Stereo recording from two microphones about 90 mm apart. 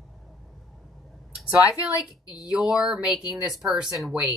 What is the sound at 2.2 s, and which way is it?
Speech, 40° left (ahead or behind).